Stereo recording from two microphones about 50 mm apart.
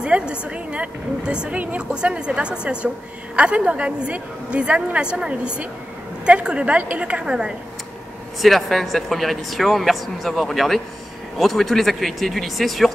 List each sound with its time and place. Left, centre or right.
0.0 s a woman's voice: right
7.2 s speech: centre
8.4 s speech: centre